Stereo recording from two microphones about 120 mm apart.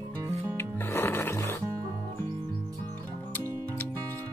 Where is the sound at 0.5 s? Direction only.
20° left (ahead or behind).